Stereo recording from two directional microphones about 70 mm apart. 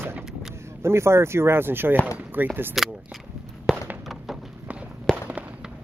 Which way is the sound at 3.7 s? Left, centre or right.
Centre.